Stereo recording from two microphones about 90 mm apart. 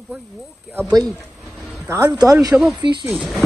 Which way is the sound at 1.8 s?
35° right (ahead or behind).